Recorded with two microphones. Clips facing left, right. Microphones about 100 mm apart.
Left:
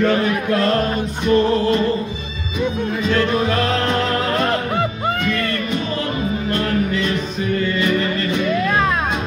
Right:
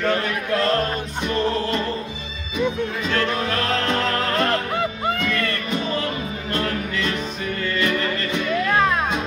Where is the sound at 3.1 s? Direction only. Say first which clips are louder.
Left 6 dB; 10° left (ahead or behind).